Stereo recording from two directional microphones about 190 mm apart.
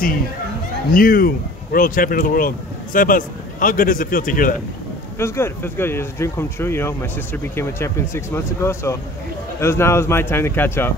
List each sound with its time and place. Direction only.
0.9 s speech: 50° left (ahead or behind)
5.2 s speech: 15° left (ahead or behind)